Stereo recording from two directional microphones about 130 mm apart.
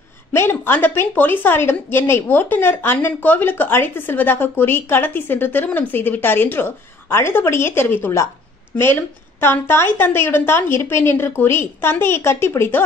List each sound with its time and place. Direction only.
0.3 s a woman's voice: 20° left (ahead or behind)
9.4 s a woman's voice: 20° left (ahead or behind)